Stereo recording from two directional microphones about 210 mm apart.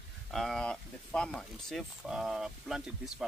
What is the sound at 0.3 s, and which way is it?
Speech, centre (ahead or behind).